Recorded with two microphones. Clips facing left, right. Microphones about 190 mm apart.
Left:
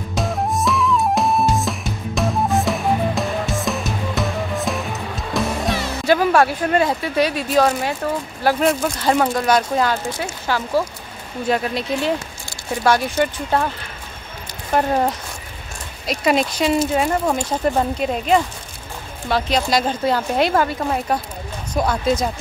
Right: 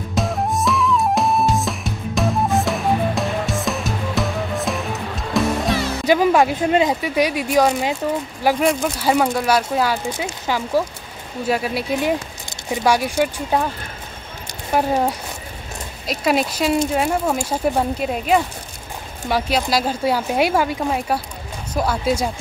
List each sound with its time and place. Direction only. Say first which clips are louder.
0.1 s music: even; centre (ahead or behind)
6.0 s speech: even; 15° right (ahead or behind)
10.1 s speech: even; 15° right (ahead or behind)
11.9 s speech: right 2 dB; 15° right (ahead or behind)
14.7 s speech: even; 5° right (ahead or behind)